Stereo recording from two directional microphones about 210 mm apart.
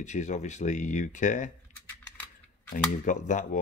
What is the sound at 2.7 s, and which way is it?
Speech, 35° left (ahead or behind).